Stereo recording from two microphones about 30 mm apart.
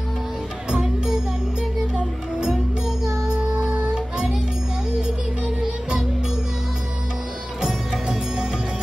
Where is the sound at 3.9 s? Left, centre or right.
Right.